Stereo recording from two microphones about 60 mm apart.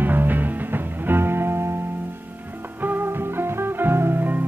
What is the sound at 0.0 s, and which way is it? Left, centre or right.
Music, right.